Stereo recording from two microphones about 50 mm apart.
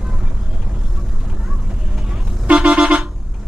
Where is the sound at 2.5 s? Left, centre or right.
Right.